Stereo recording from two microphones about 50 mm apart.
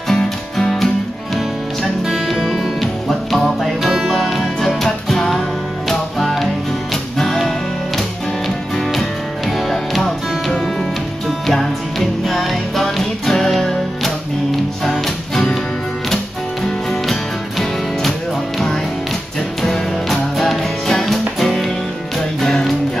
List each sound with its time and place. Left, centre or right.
0.1 s music: centre
2.0 s music: centre
16.6 s music: centre
19.6 s music: centre